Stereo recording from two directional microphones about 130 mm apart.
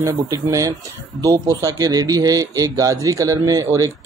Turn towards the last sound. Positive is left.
turn(degrees=-25)  # may be behind; listen again after turning